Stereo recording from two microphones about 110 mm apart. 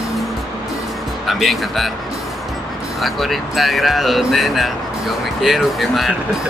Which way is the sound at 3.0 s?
Centre (ahead or behind).